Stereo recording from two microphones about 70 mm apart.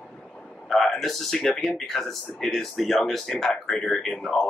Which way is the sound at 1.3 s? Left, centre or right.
Centre.